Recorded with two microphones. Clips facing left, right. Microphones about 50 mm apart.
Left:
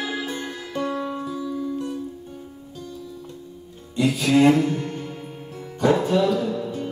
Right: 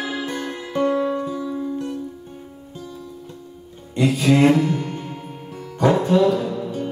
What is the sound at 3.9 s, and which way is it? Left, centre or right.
Music, right.